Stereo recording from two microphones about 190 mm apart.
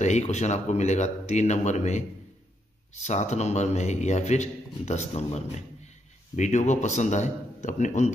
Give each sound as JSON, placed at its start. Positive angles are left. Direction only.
{"t": 0.0, "sound": "a man's voice", "side_deg": 35}